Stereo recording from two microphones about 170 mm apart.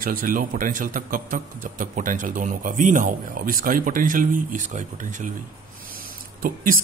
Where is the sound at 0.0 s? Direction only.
55° right (ahead or behind).